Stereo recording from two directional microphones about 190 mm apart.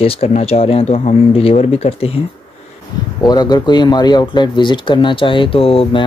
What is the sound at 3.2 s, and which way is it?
Speech, 20° left (ahead or behind).